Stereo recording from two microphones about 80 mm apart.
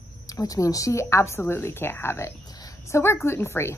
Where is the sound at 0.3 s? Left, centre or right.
Left.